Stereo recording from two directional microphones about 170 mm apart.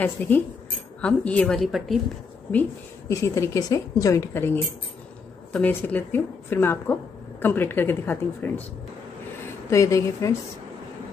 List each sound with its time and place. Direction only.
0.0 s a woman's voice: 10° left (ahead or behind)
3.1 s a woman's voice: 20° left (ahead or behind)
9.7 s a woman's voice: 20° left (ahead or behind)